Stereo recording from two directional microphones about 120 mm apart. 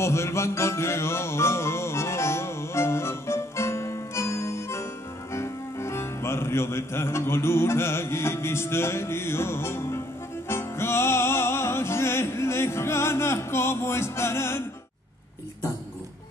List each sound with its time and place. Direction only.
0.0 s music: 25° left (ahead or behind)